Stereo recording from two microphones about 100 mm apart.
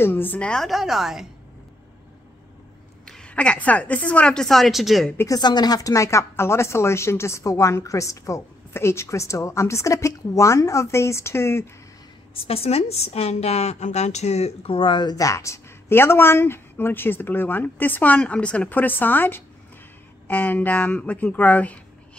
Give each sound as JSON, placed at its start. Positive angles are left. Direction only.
{"t": 0.0, "sound": "a woman's voice", "side_deg": 20}
{"t": 3.1, "sound": "a woman's voice", "side_deg": 10}
{"t": 5.3, "sound": "speech", "side_deg": 45}
{"t": 12.4, "sound": "a woman's voice", "side_deg": 75}
{"t": 15.1, "sound": "a woman's voice", "side_deg": 30}